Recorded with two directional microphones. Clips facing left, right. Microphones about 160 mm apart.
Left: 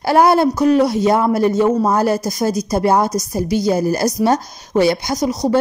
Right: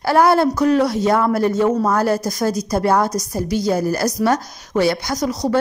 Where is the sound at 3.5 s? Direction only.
15° left (ahead or behind).